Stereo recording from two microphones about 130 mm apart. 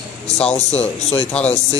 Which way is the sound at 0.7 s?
55° left (ahead or behind).